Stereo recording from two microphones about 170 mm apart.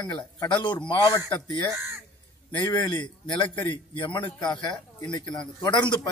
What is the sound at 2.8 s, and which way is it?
Speech, 20° left (ahead or behind).